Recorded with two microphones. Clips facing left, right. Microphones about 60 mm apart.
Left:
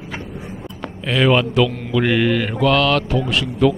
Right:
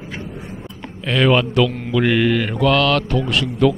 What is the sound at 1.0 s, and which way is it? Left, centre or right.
Mantra, centre.